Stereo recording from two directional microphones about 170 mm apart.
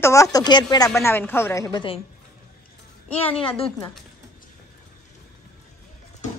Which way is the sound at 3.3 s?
35° left (ahead or behind).